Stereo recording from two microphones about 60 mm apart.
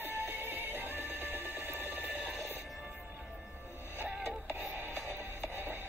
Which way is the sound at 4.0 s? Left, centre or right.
Right.